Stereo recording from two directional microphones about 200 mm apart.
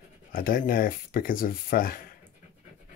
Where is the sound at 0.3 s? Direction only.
45° left (ahead or behind).